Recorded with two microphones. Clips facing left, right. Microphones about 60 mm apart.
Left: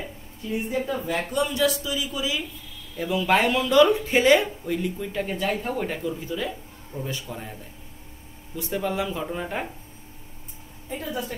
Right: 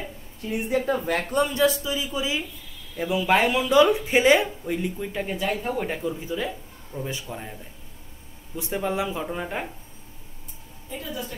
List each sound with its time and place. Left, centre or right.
0.5 s a woman's voice: right
1.3 s speech: right; by 5.9 s centre
6.0 s speech: centre
6.9 s speech: right
7.2 s speech: centre
8.5 s speech: centre
9.2 s speech: centre